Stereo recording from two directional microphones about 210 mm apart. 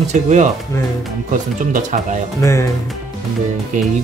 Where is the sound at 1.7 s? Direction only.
35° right (ahead or behind).